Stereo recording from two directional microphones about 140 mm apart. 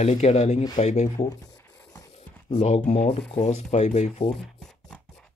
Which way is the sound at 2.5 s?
50° left (ahead or behind).